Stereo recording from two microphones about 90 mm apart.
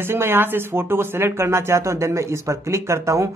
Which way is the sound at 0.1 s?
25° right (ahead or behind).